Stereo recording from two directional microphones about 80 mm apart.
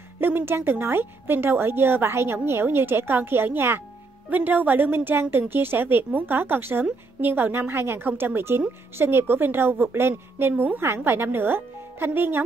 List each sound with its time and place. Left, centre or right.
0.2 s a woman's voice: right